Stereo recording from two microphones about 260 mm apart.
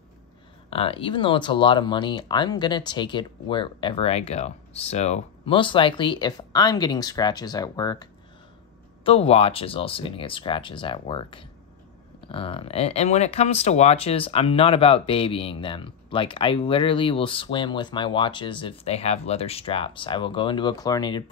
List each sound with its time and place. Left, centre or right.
0.7 s speech: left